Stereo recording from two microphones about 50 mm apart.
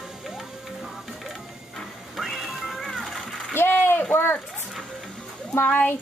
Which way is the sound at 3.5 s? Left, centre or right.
Left.